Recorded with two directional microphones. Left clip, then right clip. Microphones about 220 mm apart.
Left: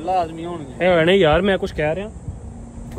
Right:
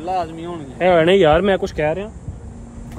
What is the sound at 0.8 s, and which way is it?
Speech, 5° left (ahead or behind).